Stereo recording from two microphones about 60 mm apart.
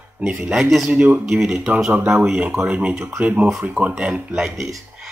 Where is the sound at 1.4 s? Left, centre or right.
Centre.